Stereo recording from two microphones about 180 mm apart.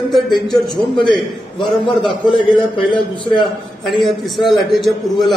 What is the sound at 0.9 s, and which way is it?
A man's voice, 25° left (ahead or behind).